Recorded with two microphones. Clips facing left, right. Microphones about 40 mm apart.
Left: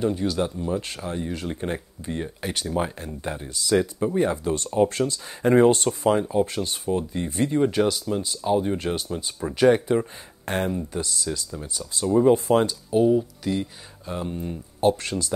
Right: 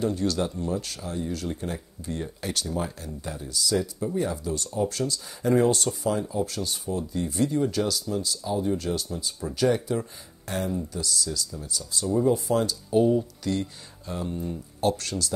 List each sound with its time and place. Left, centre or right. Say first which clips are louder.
0.0 s speech: left 2 dB; centre
0.7 s speech: left 3 dB; left
2.7 s speech: left 4 dB; left
12.9 s speech: left 2 dB; centre
14.1 s speech: left 1 dB; left